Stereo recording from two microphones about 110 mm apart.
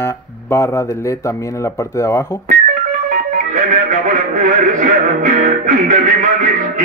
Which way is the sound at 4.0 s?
90° right.